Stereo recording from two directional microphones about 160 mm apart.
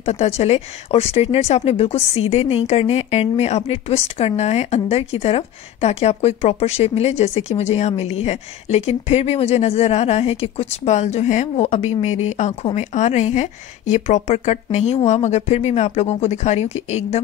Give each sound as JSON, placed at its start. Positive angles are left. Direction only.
{"t": 0.0, "sound": "a woman's voice", "side_deg": 45}